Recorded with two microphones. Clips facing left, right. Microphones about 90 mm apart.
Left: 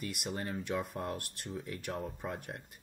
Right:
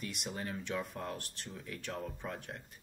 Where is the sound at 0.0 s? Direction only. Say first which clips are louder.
Left 2 dB; 5° left (ahead or behind).